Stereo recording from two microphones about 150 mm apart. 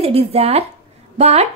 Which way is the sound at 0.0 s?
40° right (ahead or behind).